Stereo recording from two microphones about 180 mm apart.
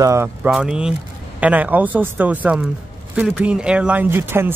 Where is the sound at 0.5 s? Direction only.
5° right (ahead or behind).